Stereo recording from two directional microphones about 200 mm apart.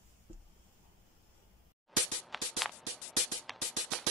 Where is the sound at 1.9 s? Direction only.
Centre (ahead or behind).